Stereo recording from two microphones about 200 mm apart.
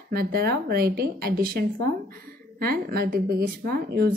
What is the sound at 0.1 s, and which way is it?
A woman's voice, 50° right (ahead or behind).